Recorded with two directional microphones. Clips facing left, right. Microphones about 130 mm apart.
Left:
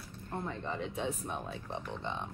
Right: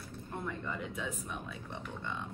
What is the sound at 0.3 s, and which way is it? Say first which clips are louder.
Speech: left 2 dB; 25° left (ahead or behind).